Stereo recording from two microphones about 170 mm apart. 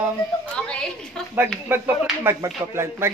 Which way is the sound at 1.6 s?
10° right (ahead or behind).